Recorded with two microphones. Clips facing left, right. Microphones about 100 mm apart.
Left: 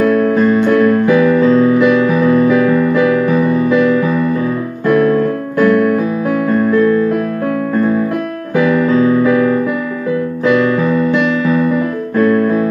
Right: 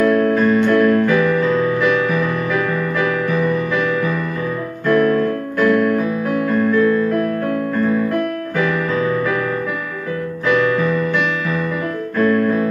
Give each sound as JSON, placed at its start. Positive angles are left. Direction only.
{"t": 0.0, "sound": "music", "side_deg": 15}
{"t": 4.8, "sound": "music", "side_deg": 20}
{"t": 5.6, "sound": "keyboard", "side_deg": 10}
{"t": 11.0, "sound": "music", "side_deg": 15}
{"t": 12.2, "sound": "keyboard", "side_deg": 15}